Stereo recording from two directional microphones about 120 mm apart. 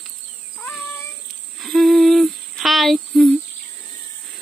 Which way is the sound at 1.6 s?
Centre (ahead or behind).